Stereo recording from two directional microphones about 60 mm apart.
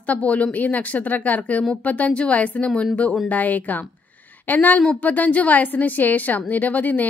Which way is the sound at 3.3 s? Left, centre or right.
Left.